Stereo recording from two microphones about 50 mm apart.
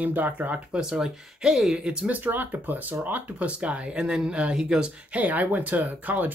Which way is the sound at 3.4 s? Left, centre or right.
Right.